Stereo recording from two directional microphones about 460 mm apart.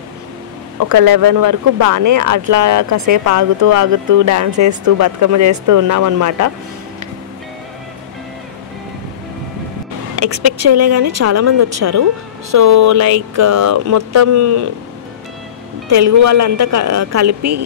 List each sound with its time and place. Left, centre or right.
0.7 s speech: right
10.1 s speech: right
15.9 s speech: right